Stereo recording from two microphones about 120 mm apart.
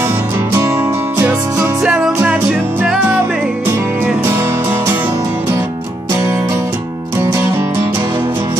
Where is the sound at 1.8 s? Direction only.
5° right (ahead or behind).